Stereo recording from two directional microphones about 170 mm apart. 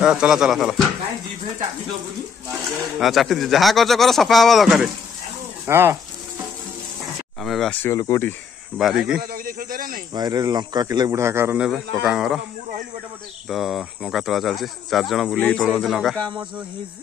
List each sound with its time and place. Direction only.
0.0 s speech: 5° right (ahead or behind)
3.0 s speech: centre (ahead or behind)
5.7 s speech: 15° right (ahead or behind)
7.4 s speech: centre (ahead or behind)
7.8 s speech: 20° left (ahead or behind)
8.7 s speech: centre (ahead or behind)
9.3 s speech: 60° right (ahead or behind)
10.1 s speech: 25° right (ahead or behind); by 12.4 s 5° right (ahead or behind)
13.5 s speech: centre (ahead or behind)